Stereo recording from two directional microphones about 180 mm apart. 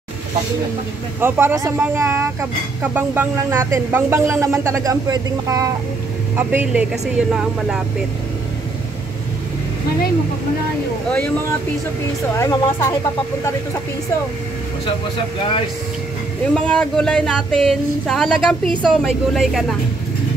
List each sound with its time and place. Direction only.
1.2 s speech: 15° right (ahead or behind)
12.4 s speech: 15° left (ahead or behind)
16.5 s speech: 5° left (ahead or behind)
18.7 s a woman's voice: 25° right (ahead or behind)
18.9 s speech: centre (ahead or behind)